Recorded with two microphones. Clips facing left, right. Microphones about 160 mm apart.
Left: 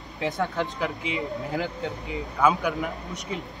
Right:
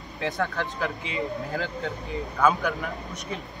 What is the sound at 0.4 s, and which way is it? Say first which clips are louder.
Speech: left 1 dB; 15° left (ahead or behind).